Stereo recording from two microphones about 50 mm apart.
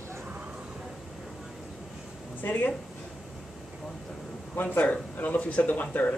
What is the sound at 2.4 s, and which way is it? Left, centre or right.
Speech, left.